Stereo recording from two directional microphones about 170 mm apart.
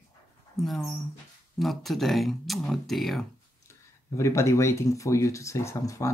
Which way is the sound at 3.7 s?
15° left (ahead or behind).